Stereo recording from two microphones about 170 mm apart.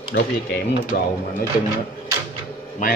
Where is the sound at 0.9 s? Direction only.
55° left (ahead or behind).